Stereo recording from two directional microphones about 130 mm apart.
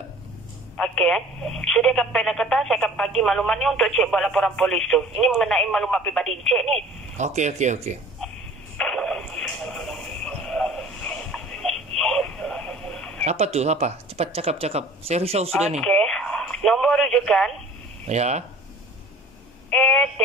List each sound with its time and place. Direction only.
0.7 s speech: 5° left (ahead or behind)
7.2 s speech: 65° right (ahead or behind)
8.7 s radio: 5° left (ahead or behind)
13.2 s speech: 55° right (ahead or behind)
15.8 s speech: 5° left (ahead or behind)
18.0 s speech: 60° right (ahead or behind)
19.7 s speech: 5° left (ahead or behind)